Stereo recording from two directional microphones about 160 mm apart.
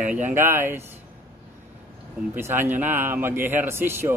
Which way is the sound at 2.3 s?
15° right (ahead or behind).